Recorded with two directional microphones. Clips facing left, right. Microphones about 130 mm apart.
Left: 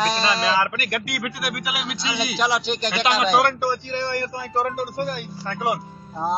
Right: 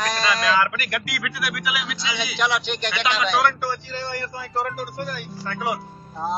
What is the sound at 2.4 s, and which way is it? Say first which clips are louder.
A man's voice: left 1 dB; 35° left (ahead or behind).